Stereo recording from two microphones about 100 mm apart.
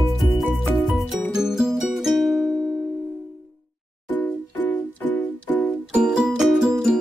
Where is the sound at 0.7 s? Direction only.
Centre (ahead or behind).